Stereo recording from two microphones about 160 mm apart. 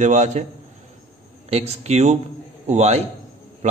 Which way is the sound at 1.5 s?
45° right (ahead or behind).